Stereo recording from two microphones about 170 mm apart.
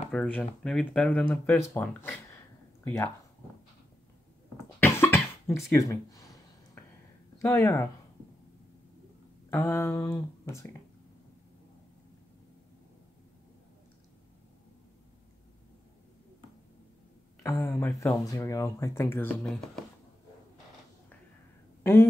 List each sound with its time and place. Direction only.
0.1 s speech: 5° left (ahead or behind)
4.7 s cough: 15° left (ahead or behind)
7.4 s speech: 15° left (ahead or behind)
9.5 s speech: 15° left (ahead or behind)
17.4 s speech: 15° left (ahead or behind)